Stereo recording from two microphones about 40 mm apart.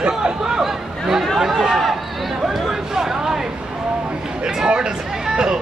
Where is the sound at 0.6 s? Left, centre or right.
Centre.